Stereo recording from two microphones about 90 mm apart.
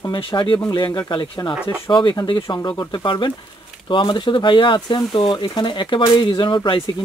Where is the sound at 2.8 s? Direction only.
45° left (ahead or behind).